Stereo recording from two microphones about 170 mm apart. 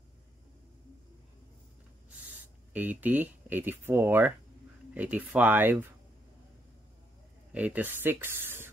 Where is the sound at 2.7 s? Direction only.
10° right (ahead or behind).